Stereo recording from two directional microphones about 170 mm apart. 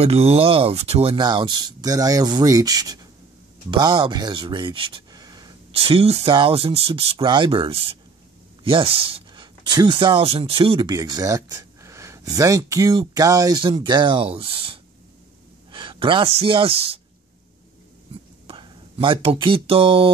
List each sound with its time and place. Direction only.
0.0 s speech: 35° right (ahead or behind)
5.7 s speech: 35° right (ahead or behind)
18.5 s speech: 30° right (ahead or behind)